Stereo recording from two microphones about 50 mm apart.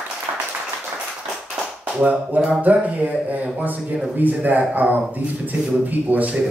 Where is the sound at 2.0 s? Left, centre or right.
Right.